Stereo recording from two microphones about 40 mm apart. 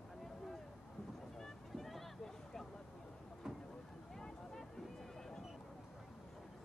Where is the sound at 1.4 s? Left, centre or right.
Centre.